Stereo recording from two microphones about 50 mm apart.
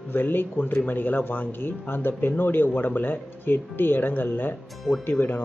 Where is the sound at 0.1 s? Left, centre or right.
Left.